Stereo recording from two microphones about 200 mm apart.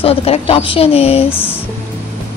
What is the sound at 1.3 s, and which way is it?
Speech, 10° left (ahead or behind).